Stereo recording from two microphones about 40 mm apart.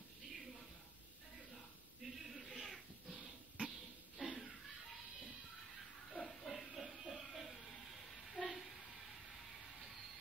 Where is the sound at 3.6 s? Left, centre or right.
Right.